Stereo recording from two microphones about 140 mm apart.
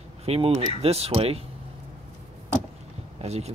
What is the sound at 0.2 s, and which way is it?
Speech, 45° right (ahead or behind).